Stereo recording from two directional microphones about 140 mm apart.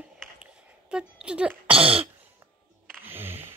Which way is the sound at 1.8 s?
40° right (ahead or behind).